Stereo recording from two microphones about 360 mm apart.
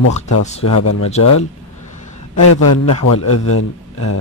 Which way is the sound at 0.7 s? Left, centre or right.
Left.